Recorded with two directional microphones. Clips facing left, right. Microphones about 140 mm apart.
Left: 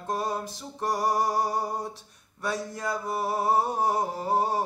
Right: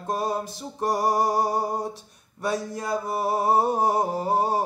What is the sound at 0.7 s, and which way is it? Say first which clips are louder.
Music: right 3 dB; 20° right (ahead or behind).